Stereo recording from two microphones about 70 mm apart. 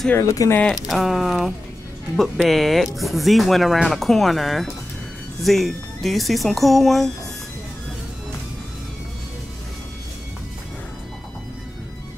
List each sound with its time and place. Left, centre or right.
0.2 s speech: left
0.7 s speech: centre